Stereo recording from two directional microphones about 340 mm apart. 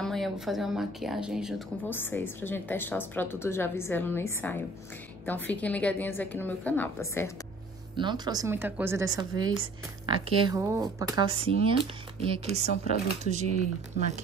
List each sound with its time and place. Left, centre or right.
0.0 s speech: centre
7.9 s speech: centre